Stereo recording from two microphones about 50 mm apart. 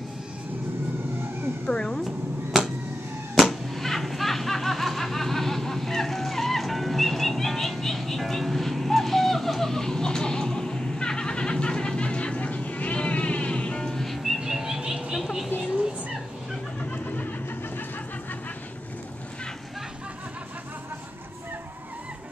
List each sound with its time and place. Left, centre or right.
1.7 s speech: centre
2.0 s a sound: centre
3.3 s snicker: centre
14.0 s music: centre
14.4 s music: centre
16.9 s a sound: left